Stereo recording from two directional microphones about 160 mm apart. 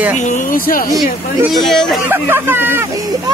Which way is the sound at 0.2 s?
55° left (ahead or behind).